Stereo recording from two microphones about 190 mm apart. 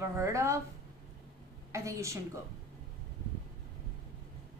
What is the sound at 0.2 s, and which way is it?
Speech, 15° right (ahead or behind).